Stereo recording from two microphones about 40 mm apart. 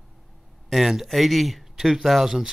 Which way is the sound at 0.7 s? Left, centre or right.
Centre.